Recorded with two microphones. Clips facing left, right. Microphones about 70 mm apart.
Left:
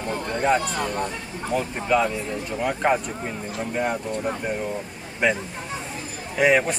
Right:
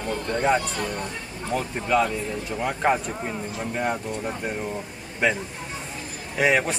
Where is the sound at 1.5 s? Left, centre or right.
Centre.